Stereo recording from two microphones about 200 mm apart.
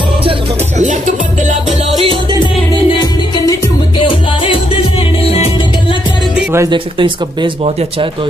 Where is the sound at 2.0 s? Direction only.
25° right (ahead or behind).